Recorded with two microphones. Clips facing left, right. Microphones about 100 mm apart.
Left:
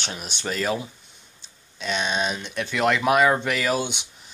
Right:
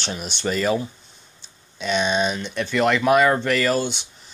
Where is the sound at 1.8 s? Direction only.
Centre (ahead or behind).